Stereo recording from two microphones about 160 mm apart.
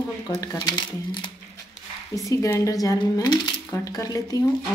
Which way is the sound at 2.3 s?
20° left (ahead or behind).